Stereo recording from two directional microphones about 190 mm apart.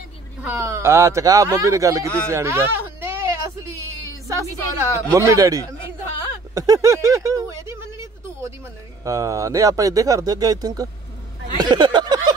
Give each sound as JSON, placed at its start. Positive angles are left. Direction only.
{"t": 0.4, "sound": "speech", "side_deg": -15}
{"t": 9.0, "sound": "speech", "side_deg": -15}
{"t": 11.5, "sound": "a sound", "side_deg": -25}